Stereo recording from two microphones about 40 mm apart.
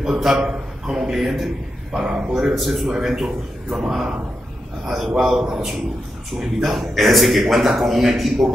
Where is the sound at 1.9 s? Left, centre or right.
Right.